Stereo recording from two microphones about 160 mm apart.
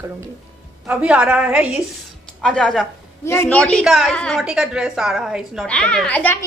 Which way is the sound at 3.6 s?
Centre (ahead or behind).